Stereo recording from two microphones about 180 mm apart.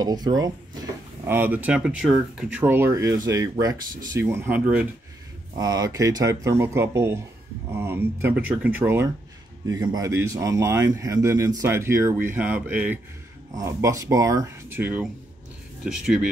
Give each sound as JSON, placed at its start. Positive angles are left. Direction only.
{"t": 0.0, "sound": "speech", "side_deg": -20}
{"t": 5.6, "sound": "speech", "side_deg": -20}